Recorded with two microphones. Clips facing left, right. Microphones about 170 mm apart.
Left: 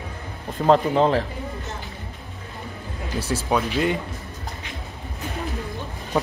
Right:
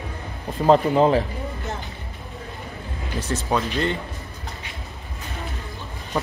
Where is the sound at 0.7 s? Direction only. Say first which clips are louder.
Right 1 dB; 5° right (ahead or behind).